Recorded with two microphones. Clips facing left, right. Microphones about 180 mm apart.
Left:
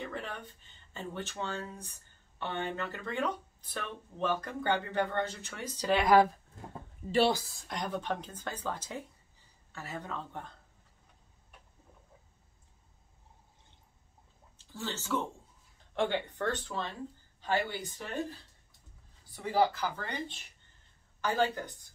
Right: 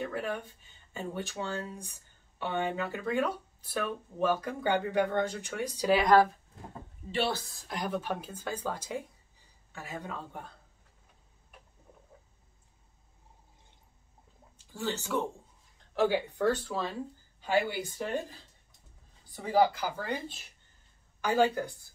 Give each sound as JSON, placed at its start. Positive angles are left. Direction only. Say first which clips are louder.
{"t": 0.0, "sound": "speech", "louder": "right 6 dB", "side_deg": -10}
{"t": 7.4, "sound": "speech", "louder": "right 2 dB", "side_deg": 0}
{"t": 14.6, "sound": "speech", "louder": "right 5 dB", "side_deg": -15}
{"t": 19.4, "sound": "speech", "louder": "right 3 dB", "side_deg": -10}